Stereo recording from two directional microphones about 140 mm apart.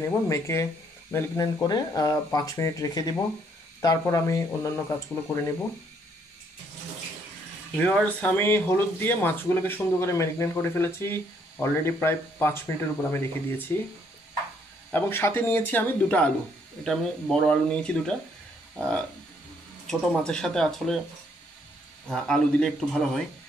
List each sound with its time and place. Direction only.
0.3 s speech: 20° left (ahead or behind)
7.8 s speech: 10° left (ahead or behind)
14.9 s speech: 15° left (ahead or behind)
22.0 s speech: 5° left (ahead or behind)